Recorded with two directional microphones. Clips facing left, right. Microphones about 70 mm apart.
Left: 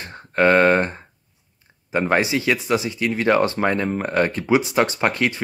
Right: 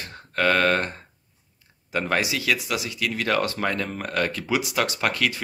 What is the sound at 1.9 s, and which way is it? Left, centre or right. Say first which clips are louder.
Speech: left 5 dB; left.